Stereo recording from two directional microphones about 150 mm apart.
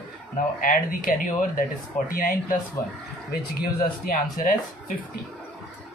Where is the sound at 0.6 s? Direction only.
65° left (ahead or behind).